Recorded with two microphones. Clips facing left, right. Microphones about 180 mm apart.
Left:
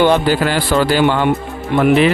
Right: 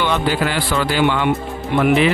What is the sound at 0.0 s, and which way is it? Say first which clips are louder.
Speech: left 6 dB; 40° left (ahead or behind).